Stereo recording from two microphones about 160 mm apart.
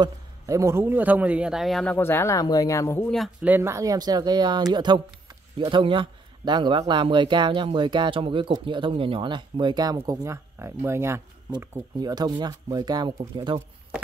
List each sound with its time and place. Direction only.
0.0 s a man's voice: 20° right (ahead or behind); by 2.0 s centre (ahead or behind)
2.0 s speech: 15° left (ahead or behind)
3.4 s a man's voice: 15° right (ahead or behind)